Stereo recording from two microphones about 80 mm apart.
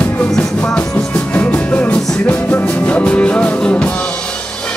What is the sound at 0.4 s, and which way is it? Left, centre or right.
Music, centre.